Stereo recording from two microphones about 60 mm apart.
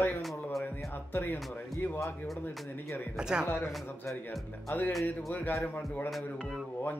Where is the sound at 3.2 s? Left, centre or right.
Centre.